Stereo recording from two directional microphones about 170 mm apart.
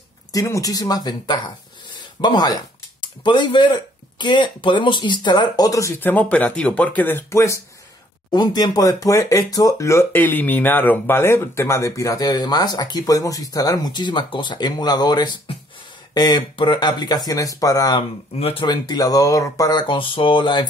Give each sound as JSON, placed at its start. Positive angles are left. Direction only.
{"t": 0.3, "sound": "speech", "side_deg": 20}
{"t": 2.0, "sound": "a sound", "side_deg": 25}
{"t": 4.2, "sound": "speech", "side_deg": 25}
{"t": 18.4, "sound": "speech", "side_deg": 30}